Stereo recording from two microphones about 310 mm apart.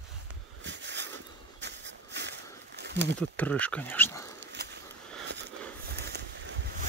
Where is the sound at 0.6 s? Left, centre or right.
Right.